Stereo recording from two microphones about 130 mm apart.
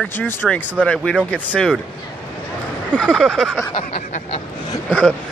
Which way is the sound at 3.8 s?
50° left (ahead or behind).